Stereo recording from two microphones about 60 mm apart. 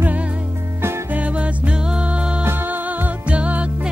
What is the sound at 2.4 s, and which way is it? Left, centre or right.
Music, right.